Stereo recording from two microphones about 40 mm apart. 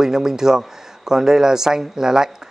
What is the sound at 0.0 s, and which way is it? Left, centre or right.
Speech, centre.